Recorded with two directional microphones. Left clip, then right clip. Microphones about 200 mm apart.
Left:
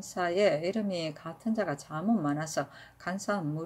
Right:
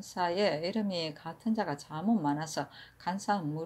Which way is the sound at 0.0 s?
5° left (ahead or behind).